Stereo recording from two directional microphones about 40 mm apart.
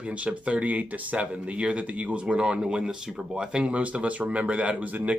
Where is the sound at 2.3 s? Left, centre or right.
Right.